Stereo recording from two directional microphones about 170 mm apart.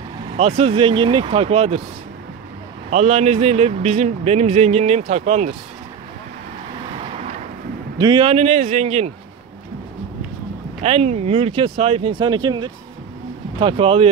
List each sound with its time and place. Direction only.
0.4 s speech: 40° right (ahead or behind)
2.9 s speech: 40° right (ahead or behind)
7.2 s vehicle: 40° right (ahead or behind)
8.0 s speech: 30° right (ahead or behind)
10.8 s speech: 40° right (ahead or behind)